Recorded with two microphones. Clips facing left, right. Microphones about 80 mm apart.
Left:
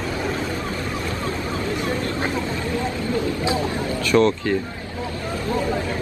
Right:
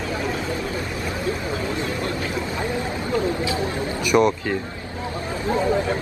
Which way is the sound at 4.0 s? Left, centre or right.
Centre.